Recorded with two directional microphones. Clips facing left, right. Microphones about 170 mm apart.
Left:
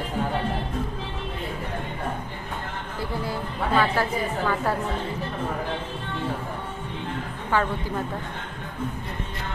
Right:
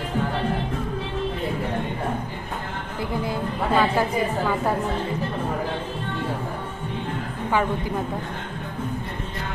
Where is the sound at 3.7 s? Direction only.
15° right (ahead or behind).